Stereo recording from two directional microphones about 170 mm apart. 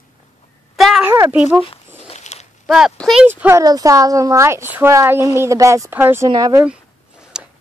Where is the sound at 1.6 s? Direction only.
35° left (ahead or behind).